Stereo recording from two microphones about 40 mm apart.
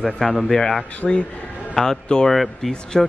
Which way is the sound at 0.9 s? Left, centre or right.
Left.